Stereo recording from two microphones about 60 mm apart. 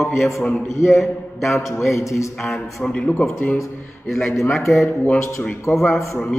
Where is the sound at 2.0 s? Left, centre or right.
Left.